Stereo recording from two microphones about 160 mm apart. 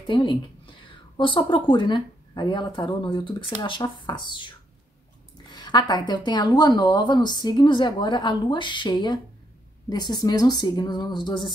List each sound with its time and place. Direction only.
0.0 s speech: 30° left (ahead or behind)